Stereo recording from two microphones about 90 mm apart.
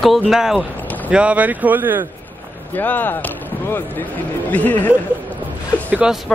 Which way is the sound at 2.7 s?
20° left (ahead or behind).